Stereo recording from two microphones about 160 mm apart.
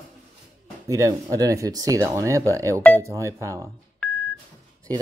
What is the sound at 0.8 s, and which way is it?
Speech, 20° right (ahead or behind).